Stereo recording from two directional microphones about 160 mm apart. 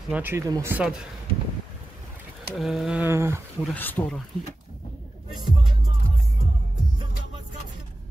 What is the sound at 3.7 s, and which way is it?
Speech, 10° left (ahead or behind).